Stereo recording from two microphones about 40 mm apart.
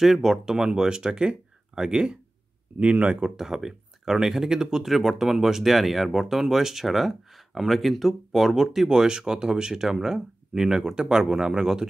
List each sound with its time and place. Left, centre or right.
0.0 s speech: centre
2.8 s speech: right
3.3 s speech: centre